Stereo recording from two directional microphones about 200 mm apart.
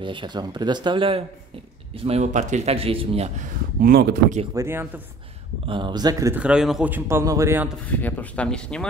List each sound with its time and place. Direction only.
0.0 s speech: 25° right (ahead or behind)
3.8 s speech: 45° right (ahead or behind)
4.6 s a man's voice: 10° right (ahead or behind)
5.7 s a man's voice: 25° right (ahead or behind)
7.8 s speech: 10° left (ahead or behind)